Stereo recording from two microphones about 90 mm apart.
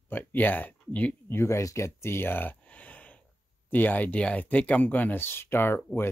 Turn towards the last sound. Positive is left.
turn(degrees=25)  # may be behind; listen again after turning